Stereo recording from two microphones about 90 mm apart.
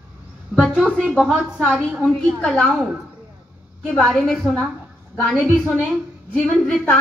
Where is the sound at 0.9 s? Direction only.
Centre (ahead or behind).